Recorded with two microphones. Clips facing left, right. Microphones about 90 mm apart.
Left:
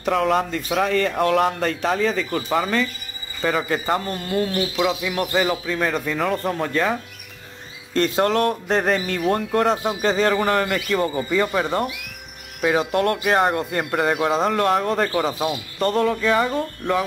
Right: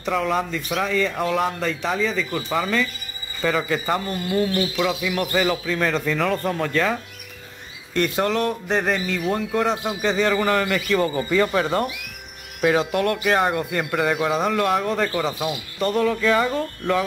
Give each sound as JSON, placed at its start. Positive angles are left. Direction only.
{"t": 0.0, "sound": "a man's voice", "side_deg": 55}
{"t": 4.6, "sound": "speech", "side_deg": 20}
{"t": 7.9, "sound": "a man's voice", "side_deg": 40}
{"t": 11.1, "sound": "speech", "side_deg": 5}
{"t": 12.9, "sound": "speech", "side_deg": 35}
{"t": 16.2, "sound": "speech", "side_deg": 25}